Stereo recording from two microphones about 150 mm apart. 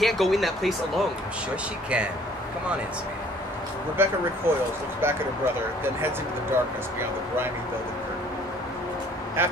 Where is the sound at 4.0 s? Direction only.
15° right (ahead or behind).